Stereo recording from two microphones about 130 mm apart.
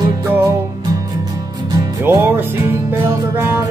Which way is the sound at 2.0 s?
15° right (ahead or behind).